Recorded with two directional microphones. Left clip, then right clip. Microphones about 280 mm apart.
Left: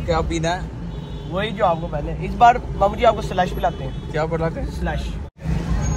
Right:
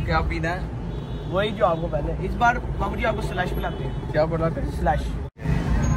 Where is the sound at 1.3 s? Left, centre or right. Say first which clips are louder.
Left 2 dB; centre.